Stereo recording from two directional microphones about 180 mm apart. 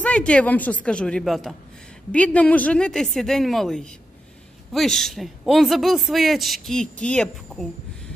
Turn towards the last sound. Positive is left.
turn(degrees=5)  # may be behind; listen again after turning